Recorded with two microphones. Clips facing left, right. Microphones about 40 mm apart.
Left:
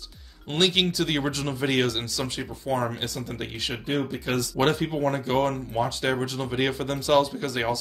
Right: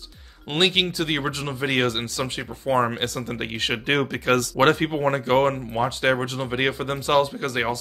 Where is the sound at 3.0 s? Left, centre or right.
Right.